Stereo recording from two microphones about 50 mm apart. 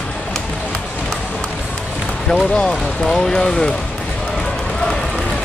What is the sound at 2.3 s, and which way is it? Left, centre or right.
Speech, centre.